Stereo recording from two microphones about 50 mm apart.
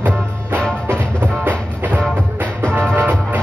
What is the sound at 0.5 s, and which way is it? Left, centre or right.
Music, left.